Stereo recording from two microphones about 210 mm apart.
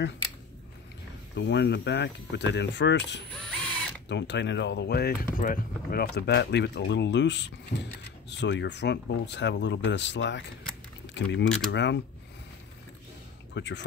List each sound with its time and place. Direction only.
1.3 s speech: 55° left (ahead or behind)
13.6 s speech: 55° left (ahead or behind)